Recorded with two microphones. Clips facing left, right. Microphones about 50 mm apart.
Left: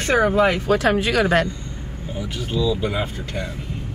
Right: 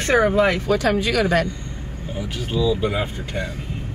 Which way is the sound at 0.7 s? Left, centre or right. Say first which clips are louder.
Left 1 dB; left.